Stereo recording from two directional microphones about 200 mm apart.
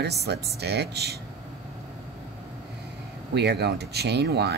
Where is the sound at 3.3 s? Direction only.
55° right (ahead or behind).